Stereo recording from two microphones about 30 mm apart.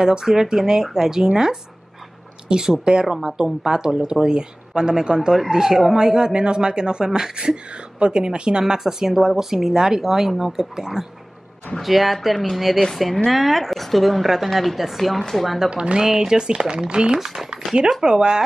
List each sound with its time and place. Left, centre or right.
0.0 s a woman's voice: centre
2.8 s speech: right
3.1 s a woman's voice: centre
11.8 s a woman's voice: centre
15.7 s speech: right
16.0 s speech: centre